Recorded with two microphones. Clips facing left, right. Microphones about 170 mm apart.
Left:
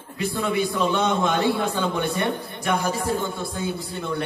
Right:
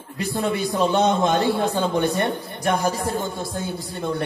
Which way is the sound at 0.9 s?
40° right (ahead or behind).